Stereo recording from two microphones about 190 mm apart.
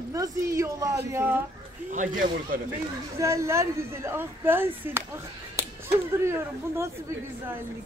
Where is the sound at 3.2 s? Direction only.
15° right (ahead or behind).